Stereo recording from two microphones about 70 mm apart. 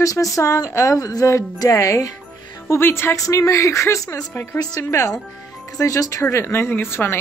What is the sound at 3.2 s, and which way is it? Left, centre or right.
Speech, left.